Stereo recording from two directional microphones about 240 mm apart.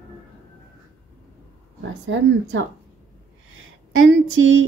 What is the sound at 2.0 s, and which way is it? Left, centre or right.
A woman's voice, right.